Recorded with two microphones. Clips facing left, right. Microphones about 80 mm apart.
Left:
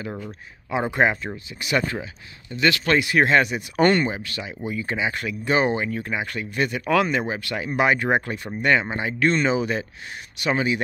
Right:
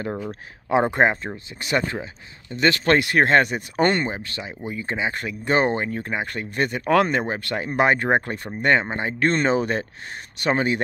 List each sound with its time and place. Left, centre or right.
0.3 s speech: right
3.0 s speech: right
3.8 s speech: right